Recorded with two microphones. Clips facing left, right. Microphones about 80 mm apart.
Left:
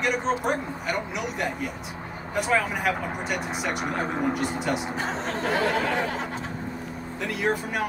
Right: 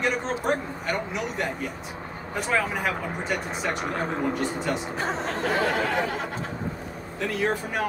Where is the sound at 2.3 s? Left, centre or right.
Centre.